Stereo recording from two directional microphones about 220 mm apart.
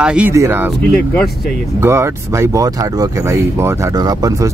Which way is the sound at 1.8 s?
10° right (ahead or behind).